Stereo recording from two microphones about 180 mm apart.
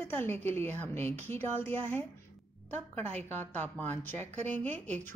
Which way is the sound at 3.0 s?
35° right (ahead or behind).